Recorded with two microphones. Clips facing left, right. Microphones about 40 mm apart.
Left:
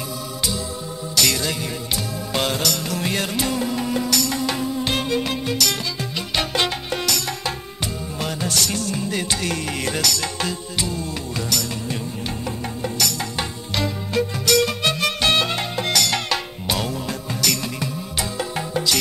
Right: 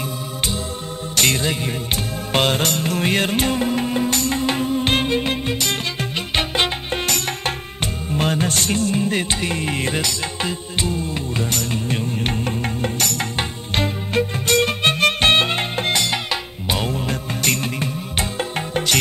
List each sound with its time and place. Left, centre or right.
1.1 s music: right
7.1 s music: right
16.8 s music: right